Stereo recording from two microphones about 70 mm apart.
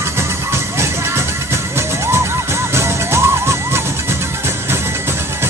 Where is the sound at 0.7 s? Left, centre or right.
Right.